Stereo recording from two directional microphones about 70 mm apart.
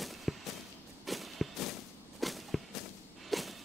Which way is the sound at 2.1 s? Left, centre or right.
Centre.